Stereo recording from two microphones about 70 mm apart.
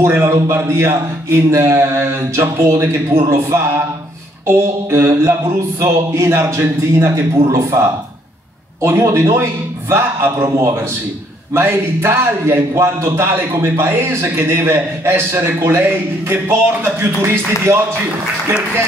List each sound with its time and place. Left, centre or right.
0.0 s a man's voice: right